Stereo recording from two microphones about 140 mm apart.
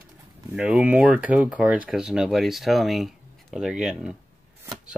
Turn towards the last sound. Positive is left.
turn(degrees=-5)  # may be behind; listen again after turning